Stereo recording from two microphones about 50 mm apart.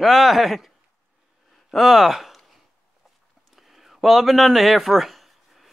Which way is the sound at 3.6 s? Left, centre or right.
Centre.